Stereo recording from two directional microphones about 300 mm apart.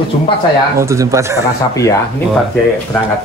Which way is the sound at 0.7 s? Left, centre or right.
Centre.